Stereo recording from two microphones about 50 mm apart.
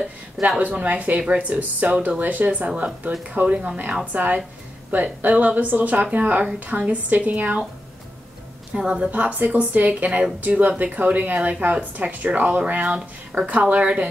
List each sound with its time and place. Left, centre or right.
0.6 s speech: right
8.7 s a woman's voice: centre
9.1 s speech: right